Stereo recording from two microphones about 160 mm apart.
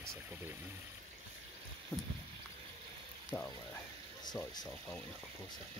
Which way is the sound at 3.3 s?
15° left (ahead or behind).